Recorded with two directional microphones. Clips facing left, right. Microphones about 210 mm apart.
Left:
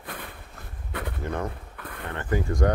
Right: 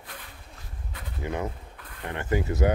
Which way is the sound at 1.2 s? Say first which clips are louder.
Right 1 dB; 10° right (ahead or behind).